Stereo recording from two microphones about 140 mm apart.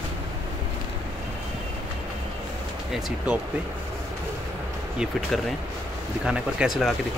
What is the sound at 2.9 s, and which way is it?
Speech, centre (ahead or behind).